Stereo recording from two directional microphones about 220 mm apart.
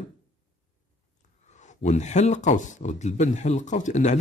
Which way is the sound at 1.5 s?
30° left (ahead or behind).